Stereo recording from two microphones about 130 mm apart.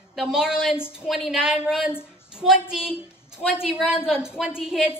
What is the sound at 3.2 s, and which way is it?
A woman's voice, 5° right (ahead or behind).